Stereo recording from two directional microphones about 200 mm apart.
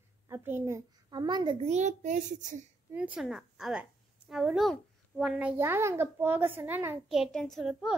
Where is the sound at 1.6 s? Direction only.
35° right (ahead or behind).